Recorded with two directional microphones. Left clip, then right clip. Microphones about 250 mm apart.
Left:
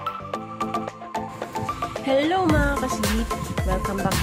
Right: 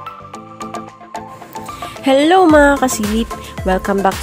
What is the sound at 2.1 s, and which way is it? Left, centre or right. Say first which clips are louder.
Speech: right 11 dB; right.